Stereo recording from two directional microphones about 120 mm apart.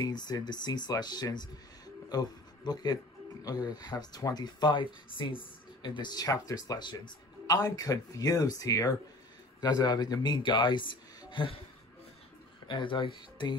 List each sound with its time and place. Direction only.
0.0 s speech: 35° left (ahead or behind)
12.6 s speech: 45° left (ahead or behind)